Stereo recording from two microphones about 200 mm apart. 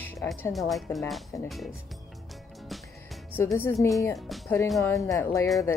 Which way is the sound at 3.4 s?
10° left (ahead or behind).